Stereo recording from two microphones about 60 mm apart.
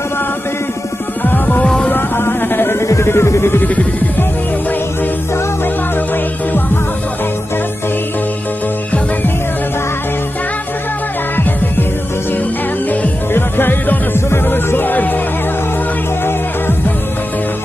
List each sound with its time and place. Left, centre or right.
1.2 s music: left
13.3 s music: left